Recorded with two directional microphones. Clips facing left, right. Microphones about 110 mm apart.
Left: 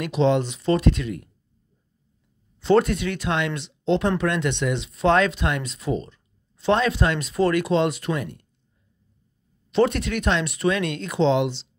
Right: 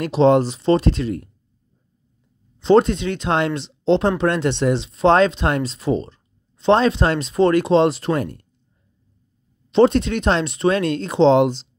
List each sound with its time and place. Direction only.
0.0 s speech: 40° right (ahead or behind)
2.6 s speech: 25° right (ahead or behind); by 8.5 s 40° right (ahead or behind)
9.7 s speech: 25° right (ahead or behind)